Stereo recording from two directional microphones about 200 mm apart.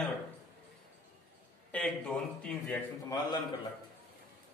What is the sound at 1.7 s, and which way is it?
A man's voice, 5° left (ahead or behind).